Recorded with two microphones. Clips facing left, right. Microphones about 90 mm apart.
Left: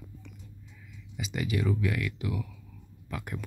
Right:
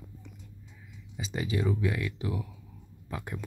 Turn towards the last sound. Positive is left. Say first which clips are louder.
# even
turn(degrees=-25)  # may be behind; listen again after turning